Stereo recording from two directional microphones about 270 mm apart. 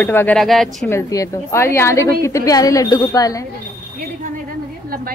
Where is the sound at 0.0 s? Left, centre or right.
Centre.